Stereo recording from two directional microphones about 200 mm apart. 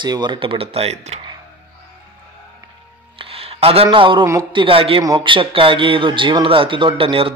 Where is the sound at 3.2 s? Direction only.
30° right (ahead or behind).